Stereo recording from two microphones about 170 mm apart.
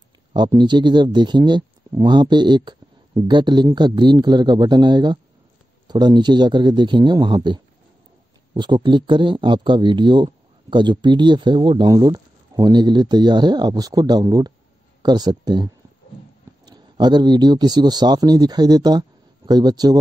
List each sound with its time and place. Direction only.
0.3 s a man's voice: 25° right (ahead or behind)